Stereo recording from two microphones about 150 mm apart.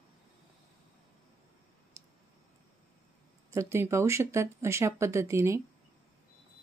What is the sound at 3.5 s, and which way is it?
Speech, 15° right (ahead or behind).